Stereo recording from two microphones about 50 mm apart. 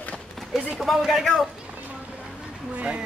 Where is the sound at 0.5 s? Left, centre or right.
Centre.